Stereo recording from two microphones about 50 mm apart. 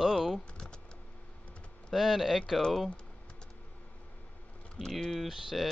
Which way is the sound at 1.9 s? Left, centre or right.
Centre.